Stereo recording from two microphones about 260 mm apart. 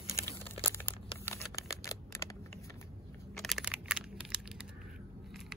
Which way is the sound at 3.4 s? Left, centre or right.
Centre.